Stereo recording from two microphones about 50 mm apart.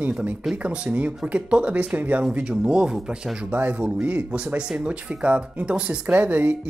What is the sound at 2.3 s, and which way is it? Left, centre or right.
Speech, centre.